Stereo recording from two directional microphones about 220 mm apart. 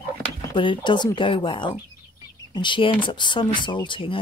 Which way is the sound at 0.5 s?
20° left (ahead or behind).